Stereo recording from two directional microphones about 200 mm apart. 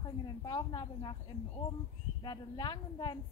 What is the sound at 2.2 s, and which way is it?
Speech, 20° left (ahead or behind).